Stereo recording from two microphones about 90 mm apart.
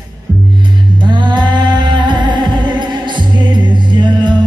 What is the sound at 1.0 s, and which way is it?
Music, 60° right (ahead or behind).